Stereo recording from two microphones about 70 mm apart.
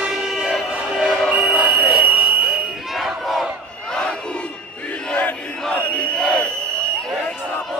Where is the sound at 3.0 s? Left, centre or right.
Centre.